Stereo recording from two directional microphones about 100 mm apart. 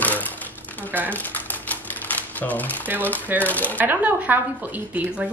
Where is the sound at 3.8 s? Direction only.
15° right (ahead or behind).